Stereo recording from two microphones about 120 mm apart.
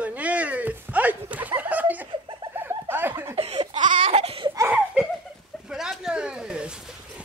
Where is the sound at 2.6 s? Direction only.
15° right (ahead or behind).